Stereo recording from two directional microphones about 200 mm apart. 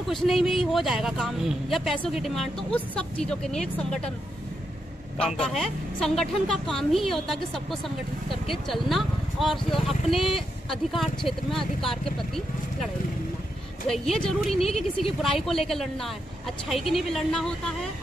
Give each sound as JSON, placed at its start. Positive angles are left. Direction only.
{"t": 0.1, "sound": "speech", "side_deg": 0}
{"t": 5.2, "sound": "speech", "side_deg": 0}
{"t": 14.5, "sound": "speech", "side_deg": 30}
{"t": 15.7, "sound": "speech", "side_deg": 0}